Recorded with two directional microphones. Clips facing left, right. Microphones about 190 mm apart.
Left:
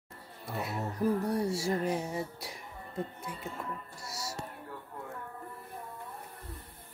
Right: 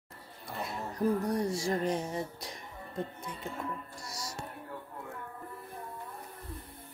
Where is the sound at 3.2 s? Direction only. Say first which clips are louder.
Right 1 dB; 5° left (ahead or behind).